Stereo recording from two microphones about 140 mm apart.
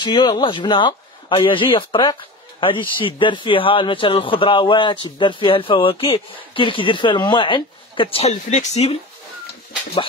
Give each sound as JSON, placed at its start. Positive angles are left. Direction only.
{"t": 0.0, "sound": "speech", "side_deg": 35}